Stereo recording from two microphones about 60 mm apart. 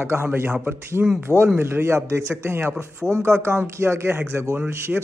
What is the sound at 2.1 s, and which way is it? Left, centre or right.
A man's voice, right.